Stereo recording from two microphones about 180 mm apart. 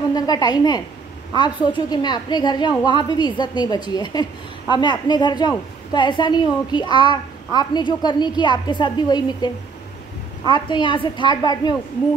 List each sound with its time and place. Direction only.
0.1 s a woman's voice: 20° left (ahead or behind)